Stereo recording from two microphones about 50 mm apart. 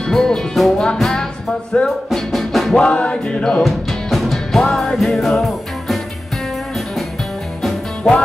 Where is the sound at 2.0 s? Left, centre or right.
Centre.